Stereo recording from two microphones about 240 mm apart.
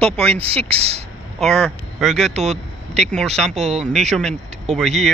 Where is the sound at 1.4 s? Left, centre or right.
Centre.